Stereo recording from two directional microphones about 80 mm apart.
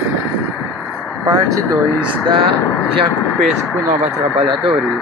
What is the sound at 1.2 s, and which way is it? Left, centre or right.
Vehicle, right.